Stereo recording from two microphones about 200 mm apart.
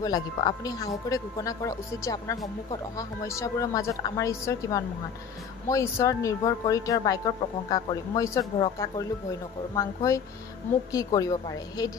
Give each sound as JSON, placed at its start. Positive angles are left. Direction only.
{"t": 0.0, "sound": "a woman's voice", "side_deg": 20}